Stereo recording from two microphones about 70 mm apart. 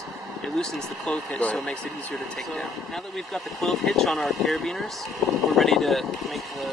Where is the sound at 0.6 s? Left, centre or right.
Centre.